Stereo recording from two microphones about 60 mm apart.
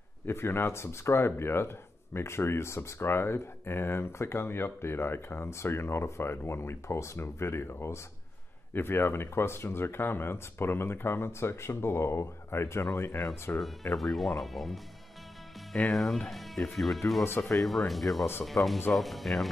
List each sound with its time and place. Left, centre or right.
0.3 s speech: left
13.9 s speech: centre
15.9 s speech: centre
17.2 s speech: left
17.6 s speech: centre